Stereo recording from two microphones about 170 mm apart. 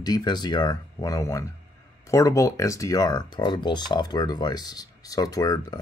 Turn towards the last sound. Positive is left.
turn(degrees=20)  # may be behind; listen again after turning